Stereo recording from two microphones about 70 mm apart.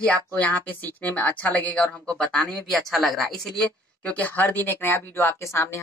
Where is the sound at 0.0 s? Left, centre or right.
Left.